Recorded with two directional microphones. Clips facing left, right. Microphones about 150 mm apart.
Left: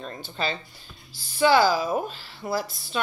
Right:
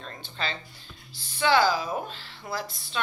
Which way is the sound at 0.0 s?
10° left (ahead or behind).